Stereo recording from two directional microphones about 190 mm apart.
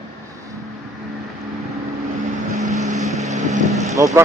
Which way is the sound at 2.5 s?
40° right (ahead or behind).